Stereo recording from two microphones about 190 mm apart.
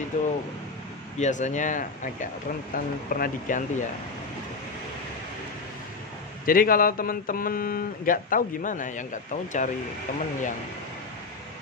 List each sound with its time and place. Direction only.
0.1 s speech: 40° left (ahead or behind)
6.4 s speech: 50° left (ahead or behind)